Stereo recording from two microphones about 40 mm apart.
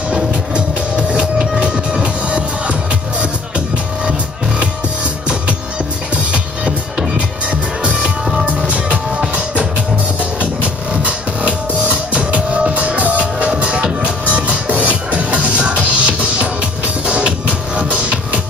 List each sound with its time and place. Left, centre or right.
0.1 s music: right
6.3 s music: right